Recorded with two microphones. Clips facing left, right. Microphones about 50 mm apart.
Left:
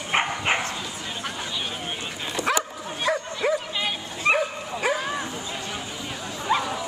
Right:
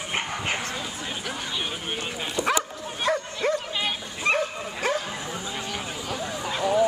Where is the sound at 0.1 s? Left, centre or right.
Left.